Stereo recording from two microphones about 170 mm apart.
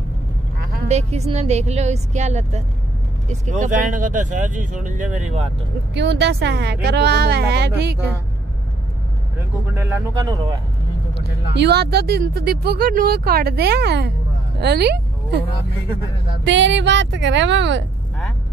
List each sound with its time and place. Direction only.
0.8 s speech: 40° right (ahead or behind)
5.9 s speech: 85° right
9.8 s speech: 15° right (ahead or behind)
11.5 s speech: 80° right
16.4 s a woman's voice: 90° right